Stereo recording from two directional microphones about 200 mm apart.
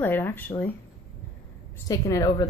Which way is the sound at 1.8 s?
15° left (ahead or behind).